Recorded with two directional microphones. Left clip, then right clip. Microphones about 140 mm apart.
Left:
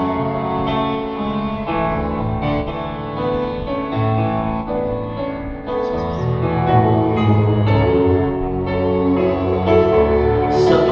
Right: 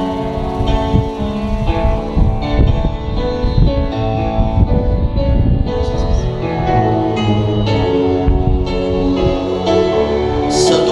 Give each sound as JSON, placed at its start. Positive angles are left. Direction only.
{"t": 6.7, "sound": "music", "side_deg": -45}